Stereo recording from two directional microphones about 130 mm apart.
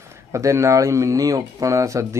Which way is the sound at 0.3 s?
20° right (ahead or behind).